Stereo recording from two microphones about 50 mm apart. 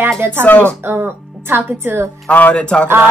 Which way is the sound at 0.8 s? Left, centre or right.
Right.